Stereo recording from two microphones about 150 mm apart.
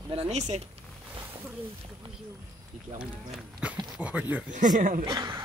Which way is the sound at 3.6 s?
10° right (ahead or behind).